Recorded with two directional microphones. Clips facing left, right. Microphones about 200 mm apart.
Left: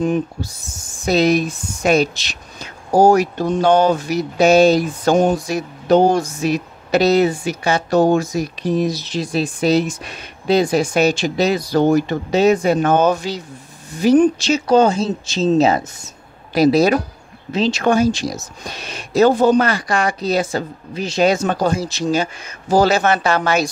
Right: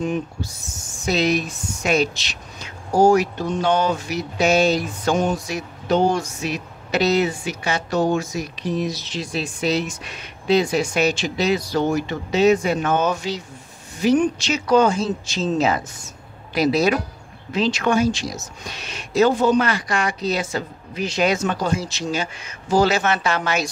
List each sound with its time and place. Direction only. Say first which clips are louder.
0.0 s speech: left 5 dB; 35° left (ahead or behind)
17.5 s speech: left 4 dB; 25° left (ahead or behind)